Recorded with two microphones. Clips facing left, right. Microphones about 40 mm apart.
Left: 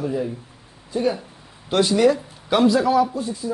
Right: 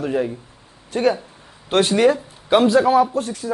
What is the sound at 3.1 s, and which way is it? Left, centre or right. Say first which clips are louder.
Speech: right 3 dB; right.